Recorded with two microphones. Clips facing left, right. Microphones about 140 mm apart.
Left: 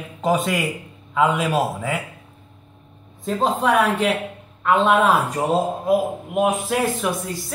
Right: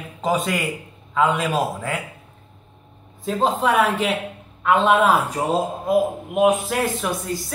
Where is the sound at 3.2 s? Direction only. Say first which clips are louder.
Even; centre (ahead or behind).